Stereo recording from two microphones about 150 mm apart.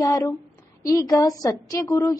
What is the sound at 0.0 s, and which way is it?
A woman's voice, 25° left (ahead or behind).